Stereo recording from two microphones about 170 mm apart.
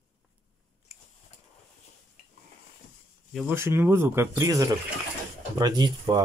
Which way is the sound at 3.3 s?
15° right (ahead or behind).